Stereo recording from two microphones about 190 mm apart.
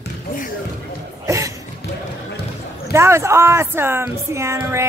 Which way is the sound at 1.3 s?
15° right (ahead or behind).